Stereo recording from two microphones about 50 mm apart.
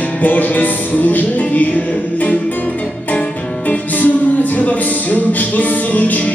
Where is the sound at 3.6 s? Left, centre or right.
Left.